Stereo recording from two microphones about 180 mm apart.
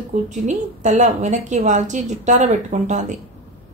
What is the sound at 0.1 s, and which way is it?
Speech, 40° right (ahead or behind).